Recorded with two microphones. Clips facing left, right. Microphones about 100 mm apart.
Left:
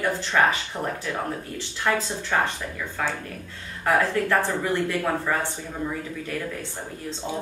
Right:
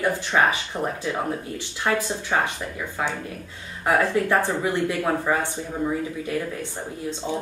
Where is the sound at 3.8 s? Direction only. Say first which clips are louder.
Right 1 dB; 15° right (ahead or behind).